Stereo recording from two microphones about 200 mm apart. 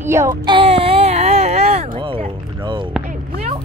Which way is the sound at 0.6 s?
30° right (ahead or behind).